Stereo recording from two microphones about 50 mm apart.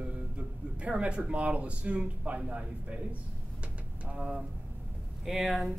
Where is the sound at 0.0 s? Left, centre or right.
Right.